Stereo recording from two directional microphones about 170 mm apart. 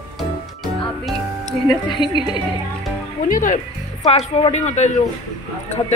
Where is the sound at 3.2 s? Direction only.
50° left (ahead or behind).